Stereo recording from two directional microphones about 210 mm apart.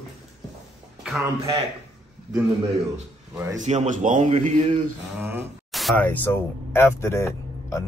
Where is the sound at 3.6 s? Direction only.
35° right (ahead or behind).